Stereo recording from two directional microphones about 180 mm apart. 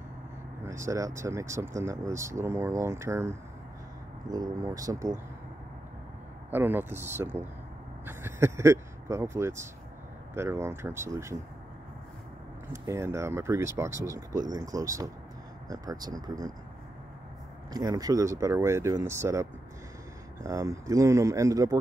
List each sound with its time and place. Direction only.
0.7 s speech: 15° right (ahead or behind)
6.5 s speech: 10° right (ahead or behind)
12.7 s speech: 15° right (ahead or behind)
17.7 s speech: 20° right (ahead or behind)
20.4 s speech: 15° right (ahead or behind)